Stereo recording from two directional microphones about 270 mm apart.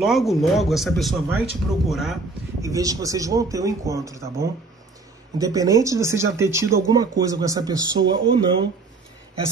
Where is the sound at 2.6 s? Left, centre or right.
Centre.